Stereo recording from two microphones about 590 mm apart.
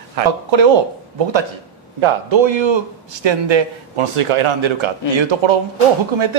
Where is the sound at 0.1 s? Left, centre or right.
Right.